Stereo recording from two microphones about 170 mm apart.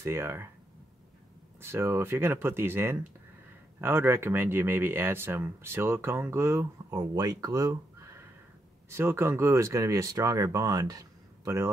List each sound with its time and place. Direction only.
0.0 s speech: 15° right (ahead or behind)
1.6 s speech: 15° right (ahead or behind)
8.9 s speech: 15° right (ahead or behind)